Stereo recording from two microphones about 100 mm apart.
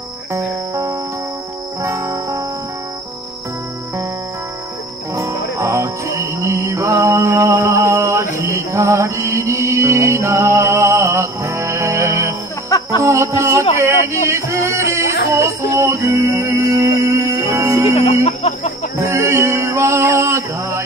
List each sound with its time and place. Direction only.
1.8 s music: 30° right (ahead or behind)
5.1 s music: 30° right (ahead or behind)
12.6 s music: 35° left (ahead or behind)
13.0 s music: 30° right (ahead or behind)
18.2 s chicken: 90° left
18.9 s music: 30° right (ahead or behind)